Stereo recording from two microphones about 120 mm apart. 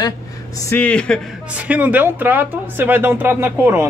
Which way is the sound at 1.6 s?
15° right (ahead or behind).